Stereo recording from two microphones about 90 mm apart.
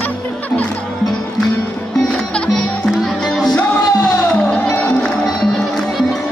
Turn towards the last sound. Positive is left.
turn(degrees=0)  # may be behind; listen again after turning